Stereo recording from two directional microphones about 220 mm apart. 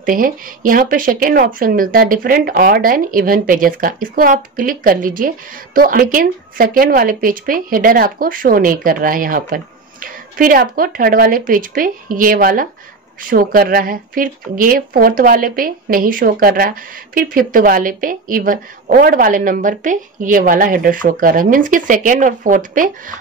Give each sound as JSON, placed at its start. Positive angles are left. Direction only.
{"t": 0.0, "sound": "speech", "side_deg": -40}